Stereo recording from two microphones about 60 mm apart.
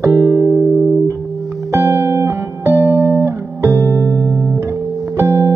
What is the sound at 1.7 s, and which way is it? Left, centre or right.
Music, right.